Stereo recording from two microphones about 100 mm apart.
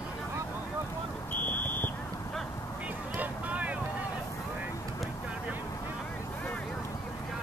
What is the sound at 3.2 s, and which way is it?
Boat, 15° right (ahead or behind).